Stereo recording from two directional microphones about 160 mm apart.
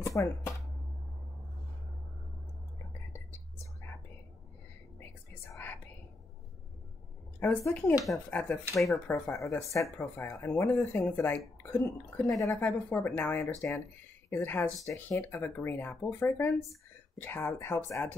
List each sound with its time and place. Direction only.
0.0 s speech: 20° left (ahead or behind)
5.3 s whispering: 15° left (ahead or behind)
7.3 s speech: 15° left (ahead or behind)
9.3 s speech: 20° left (ahead or behind)